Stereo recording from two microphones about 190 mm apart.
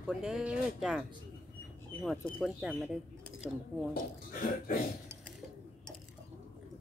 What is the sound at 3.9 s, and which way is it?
Speech, 50° left (ahead or behind).